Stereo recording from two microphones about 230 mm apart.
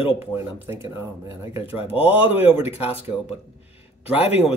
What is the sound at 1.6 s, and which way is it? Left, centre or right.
Speech, left.